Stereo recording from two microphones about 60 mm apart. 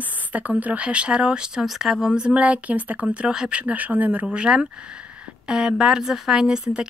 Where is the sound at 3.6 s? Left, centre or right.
Right.